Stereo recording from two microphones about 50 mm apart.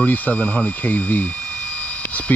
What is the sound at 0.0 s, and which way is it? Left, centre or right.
Speech, left.